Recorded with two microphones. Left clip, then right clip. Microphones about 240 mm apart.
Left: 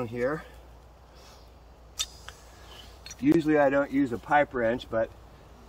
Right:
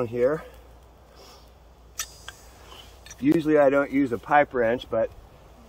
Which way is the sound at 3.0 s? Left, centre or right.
Centre.